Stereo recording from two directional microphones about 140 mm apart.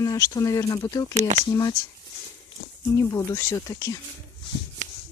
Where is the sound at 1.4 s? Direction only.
25° left (ahead or behind).